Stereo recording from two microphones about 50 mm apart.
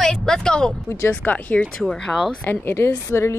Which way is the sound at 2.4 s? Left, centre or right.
Left.